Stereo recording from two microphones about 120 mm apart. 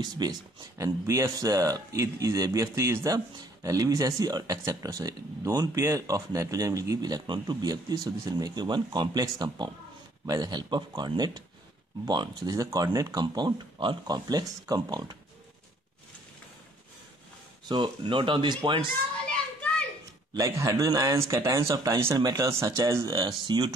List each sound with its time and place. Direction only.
0.0 s speech: 35° right (ahead or behind)
17.6 s speech: 40° right (ahead or behind)
20.3 s speech: 25° right (ahead or behind)
23.1 s speech: 40° right (ahead or behind)